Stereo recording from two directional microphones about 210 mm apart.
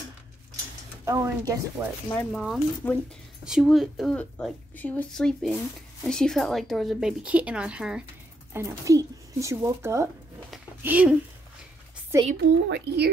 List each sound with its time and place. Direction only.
1.0 s speech: 15° right (ahead or behind)
2.0 s a woman's voice: 10° left (ahead or behind); by 10.0 s 15° right (ahead or behind)
10.5 s a sound: 5° right (ahead or behind)
12.1 s speech: 15° right (ahead or behind)
12.6 s speech: 50° right (ahead or behind)